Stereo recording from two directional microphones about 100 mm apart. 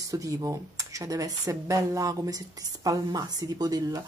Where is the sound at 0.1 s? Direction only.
35° right (ahead or behind).